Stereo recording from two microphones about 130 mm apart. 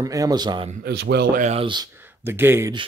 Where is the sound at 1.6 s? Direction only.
35° right (ahead or behind).